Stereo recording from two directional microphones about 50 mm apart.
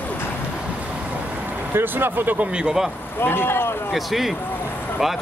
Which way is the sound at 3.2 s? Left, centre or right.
Left.